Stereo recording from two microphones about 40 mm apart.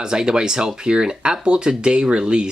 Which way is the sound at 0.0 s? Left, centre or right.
Centre.